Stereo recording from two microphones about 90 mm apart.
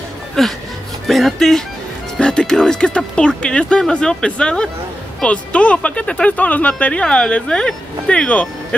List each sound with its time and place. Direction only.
0.4 s speech: 5° left (ahead or behind)